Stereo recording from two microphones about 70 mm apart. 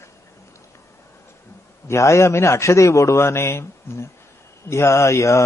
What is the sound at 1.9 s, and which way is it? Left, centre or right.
A man's voice, left.